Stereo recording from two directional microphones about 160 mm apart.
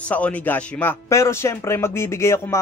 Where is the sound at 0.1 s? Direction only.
10° left (ahead or behind).